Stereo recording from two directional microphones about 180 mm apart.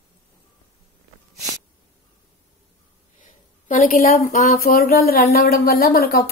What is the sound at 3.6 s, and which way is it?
A woman's voice, 45° left (ahead or behind).